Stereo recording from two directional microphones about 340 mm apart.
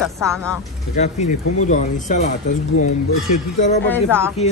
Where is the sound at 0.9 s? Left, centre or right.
Centre.